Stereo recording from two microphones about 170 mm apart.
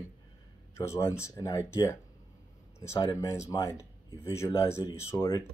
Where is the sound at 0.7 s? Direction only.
15° left (ahead or behind).